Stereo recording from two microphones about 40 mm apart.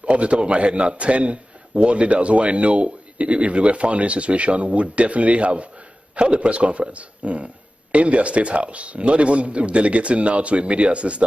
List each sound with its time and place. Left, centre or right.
0.0 s a man's voice: right